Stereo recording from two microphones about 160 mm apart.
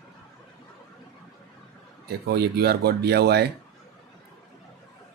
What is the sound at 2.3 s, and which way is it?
Speech, 90° right.